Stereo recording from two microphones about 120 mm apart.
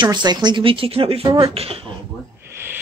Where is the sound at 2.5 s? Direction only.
20° right (ahead or behind).